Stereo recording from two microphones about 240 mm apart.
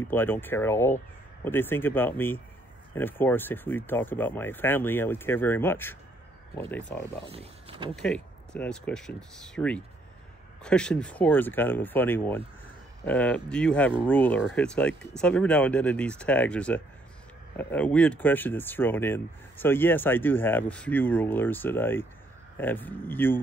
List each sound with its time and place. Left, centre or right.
0.1 s speech: centre
7.2 s speech: right
7.9 s speech: centre